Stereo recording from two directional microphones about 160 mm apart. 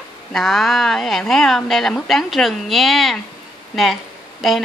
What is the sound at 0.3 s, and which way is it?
A woman's voice, centre (ahead or behind).